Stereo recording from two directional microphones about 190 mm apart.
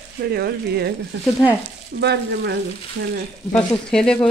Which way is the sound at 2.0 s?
60° right (ahead or behind).